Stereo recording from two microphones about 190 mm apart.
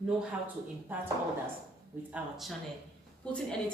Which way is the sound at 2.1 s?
Centre (ahead or behind).